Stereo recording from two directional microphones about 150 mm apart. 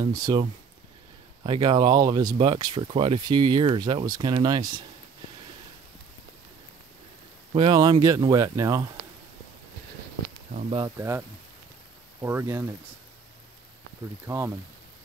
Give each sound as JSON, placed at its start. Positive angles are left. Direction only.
{"t": 0.0, "sound": "speech", "side_deg": -25}
{"t": 7.5, "sound": "speech", "side_deg": -30}
{"t": 11.0, "sound": "speech", "side_deg": -15}
{"t": 14.2, "sound": "speech", "side_deg": -20}